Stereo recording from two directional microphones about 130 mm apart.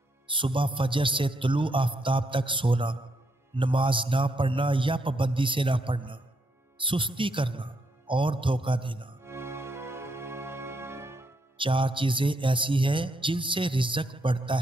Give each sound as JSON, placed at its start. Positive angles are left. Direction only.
{"t": 0.3, "sound": "speech", "side_deg": -40}
{"t": 9.2, "sound": "music", "side_deg": -20}
{"t": 11.5, "sound": "speech", "side_deg": -40}